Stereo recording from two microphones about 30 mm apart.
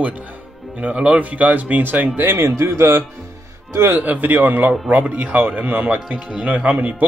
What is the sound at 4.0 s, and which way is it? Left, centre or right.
Speech, right.